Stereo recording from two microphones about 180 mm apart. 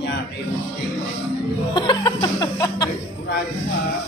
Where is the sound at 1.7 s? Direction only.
25° left (ahead or behind).